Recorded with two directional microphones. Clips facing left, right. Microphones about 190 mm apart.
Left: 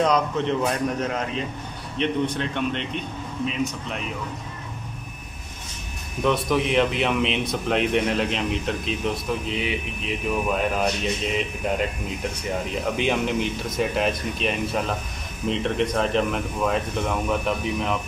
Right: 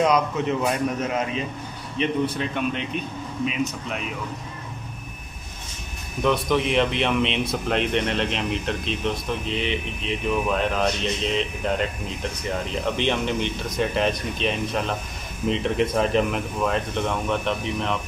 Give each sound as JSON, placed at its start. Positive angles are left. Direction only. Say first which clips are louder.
{"t": 0.0, "sound": "a man's voice", "louder": "right 1 dB", "side_deg": -5}
{"t": 6.2, "sound": "speech", "louder": "even", "side_deg": 0}